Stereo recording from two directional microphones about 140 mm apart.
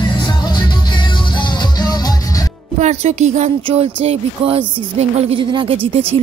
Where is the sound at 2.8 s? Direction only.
55° right (ahead or behind); by 5.8 s 35° right (ahead or behind).